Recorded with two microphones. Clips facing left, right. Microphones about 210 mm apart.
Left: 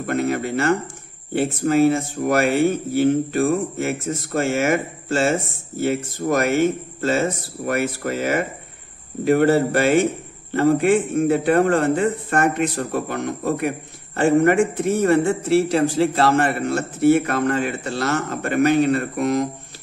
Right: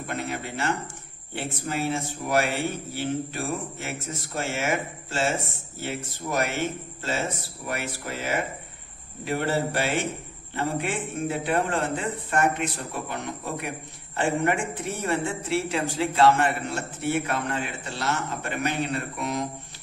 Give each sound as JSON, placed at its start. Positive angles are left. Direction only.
{"t": 0.0, "sound": "a man's voice", "side_deg": 50}
{"t": 7.6, "sound": "a man's voice", "side_deg": 55}